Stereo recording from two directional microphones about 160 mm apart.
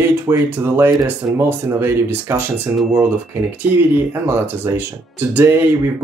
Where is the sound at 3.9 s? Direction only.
15° right (ahead or behind).